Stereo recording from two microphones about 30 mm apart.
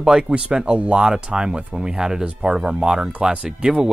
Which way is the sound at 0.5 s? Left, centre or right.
Right.